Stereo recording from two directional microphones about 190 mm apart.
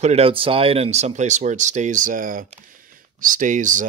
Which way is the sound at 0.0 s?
30° right (ahead or behind).